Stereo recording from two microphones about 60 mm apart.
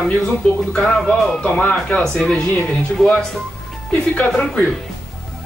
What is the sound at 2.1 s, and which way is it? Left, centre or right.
Speech, centre.